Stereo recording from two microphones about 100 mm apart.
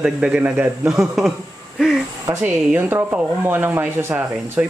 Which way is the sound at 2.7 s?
20° right (ahead or behind).